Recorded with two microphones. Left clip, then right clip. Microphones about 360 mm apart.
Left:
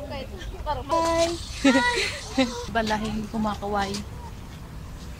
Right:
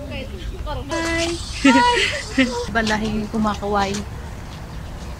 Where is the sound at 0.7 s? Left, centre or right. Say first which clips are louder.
Left 1 dB; centre.